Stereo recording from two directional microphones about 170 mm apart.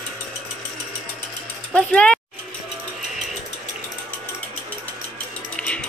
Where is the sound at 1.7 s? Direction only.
5° left (ahead or behind).